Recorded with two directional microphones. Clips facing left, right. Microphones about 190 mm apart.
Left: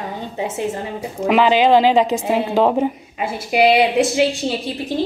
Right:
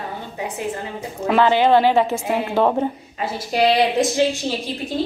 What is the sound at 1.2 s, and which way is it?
A woman's voice, 15° left (ahead or behind).